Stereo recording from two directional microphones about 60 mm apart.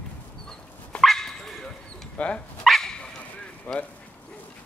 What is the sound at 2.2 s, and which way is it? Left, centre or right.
Dog, left.